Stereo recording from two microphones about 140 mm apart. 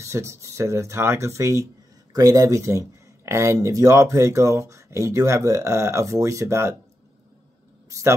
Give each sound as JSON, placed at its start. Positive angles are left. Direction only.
{"t": 0.0, "sound": "speech", "side_deg": -20}